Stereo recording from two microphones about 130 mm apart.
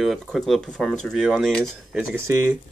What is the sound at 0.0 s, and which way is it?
Speech, centre (ahead or behind).